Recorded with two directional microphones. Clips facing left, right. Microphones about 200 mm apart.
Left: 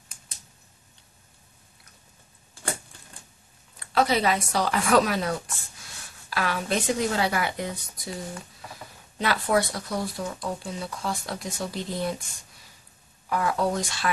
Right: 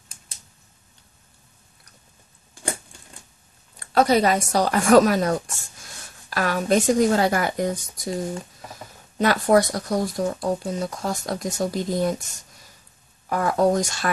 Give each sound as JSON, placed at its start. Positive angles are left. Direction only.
{"t": 3.8, "sound": "speech", "side_deg": -40}
{"t": 13.3, "sound": "speech", "side_deg": -45}